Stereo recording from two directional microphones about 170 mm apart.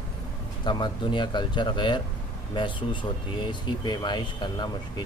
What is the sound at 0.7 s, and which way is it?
A man's voice, 25° left (ahead or behind).